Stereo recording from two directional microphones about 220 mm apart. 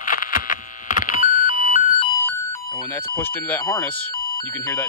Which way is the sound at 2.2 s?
15° left (ahead or behind).